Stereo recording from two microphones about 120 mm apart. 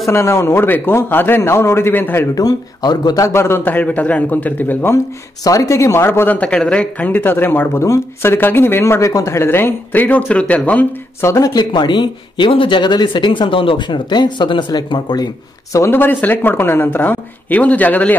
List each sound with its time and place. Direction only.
0.1 s speech: 20° left (ahead or behind)
2.3 s speech: 35° left (ahead or behind); by 5.0 s 15° left (ahead or behind)
5.4 s speech: 30° left (ahead or behind); by 11.2 s 10° left (ahead or behind)
11.2 s speech: 30° left (ahead or behind)
15.7 s speech: 20° left (ahead or behind)